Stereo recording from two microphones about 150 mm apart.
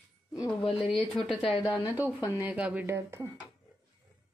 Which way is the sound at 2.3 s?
10° right (ahead or behind).